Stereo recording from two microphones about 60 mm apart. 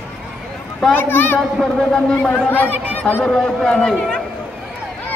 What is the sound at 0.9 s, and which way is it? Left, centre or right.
Speech, left.